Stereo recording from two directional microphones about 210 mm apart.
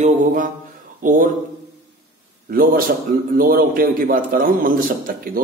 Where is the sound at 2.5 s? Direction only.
45° right (ahead or behind).